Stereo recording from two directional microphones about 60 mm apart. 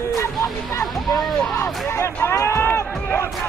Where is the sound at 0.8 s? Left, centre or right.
Centre.